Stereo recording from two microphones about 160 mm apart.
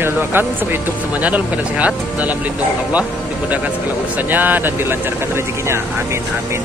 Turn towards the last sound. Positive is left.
turn(degrees=-15)  # may be behind; listen again after turning